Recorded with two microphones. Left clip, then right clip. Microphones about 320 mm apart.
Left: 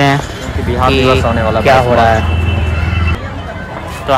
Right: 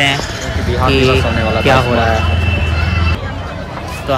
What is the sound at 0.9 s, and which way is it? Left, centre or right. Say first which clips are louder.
Speech: left 1 dB; left.